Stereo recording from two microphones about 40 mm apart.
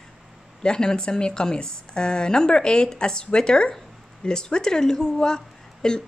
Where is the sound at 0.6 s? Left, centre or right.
Centre.